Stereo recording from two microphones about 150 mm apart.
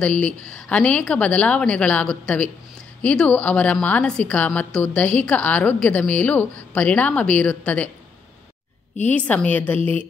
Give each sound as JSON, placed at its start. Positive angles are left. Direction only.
{"t": 0.0, "sound": "a woman's voice", "side_deg": 5}
{"t": 8.9, "sound": "a woman's voice", "side_deg": 10}